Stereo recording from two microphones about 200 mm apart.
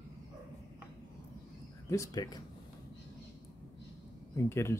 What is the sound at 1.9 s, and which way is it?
Speech, 15° left (ahead or behind).